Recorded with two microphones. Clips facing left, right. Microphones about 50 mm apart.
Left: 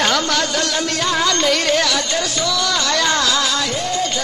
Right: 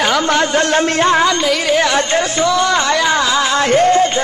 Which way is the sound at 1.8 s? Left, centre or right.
Right.